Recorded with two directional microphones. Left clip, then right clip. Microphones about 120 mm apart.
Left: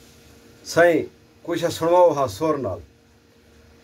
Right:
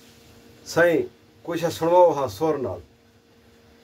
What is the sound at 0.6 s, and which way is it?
Speech, 20° left (ahead or behind).